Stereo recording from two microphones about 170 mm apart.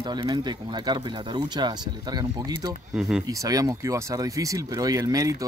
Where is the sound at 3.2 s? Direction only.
20° right (ahead or behind).